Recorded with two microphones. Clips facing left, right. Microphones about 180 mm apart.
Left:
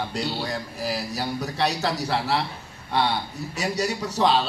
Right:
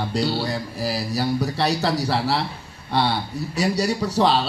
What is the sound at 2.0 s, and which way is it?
Speech, 5° right (ahead or behind).